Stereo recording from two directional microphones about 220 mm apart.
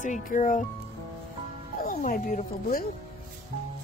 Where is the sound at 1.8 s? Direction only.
40° left (ahead or behind).